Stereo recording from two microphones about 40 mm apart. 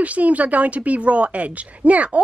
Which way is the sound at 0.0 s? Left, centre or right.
Right.